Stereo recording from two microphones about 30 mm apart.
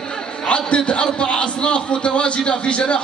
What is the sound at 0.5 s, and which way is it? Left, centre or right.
A man's voice, left.